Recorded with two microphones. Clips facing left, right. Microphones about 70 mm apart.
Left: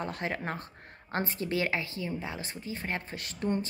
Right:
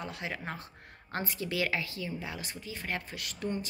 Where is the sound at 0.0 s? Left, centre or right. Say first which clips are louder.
Left 4 dB; left.